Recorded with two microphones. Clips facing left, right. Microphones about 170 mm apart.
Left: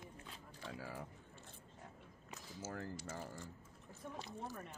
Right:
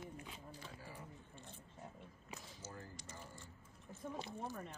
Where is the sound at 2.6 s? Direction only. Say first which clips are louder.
Left 12 dB; 90° left.